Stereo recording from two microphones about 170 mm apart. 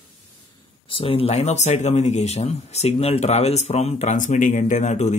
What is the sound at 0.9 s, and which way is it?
Speech, 30° left (ahead or behind).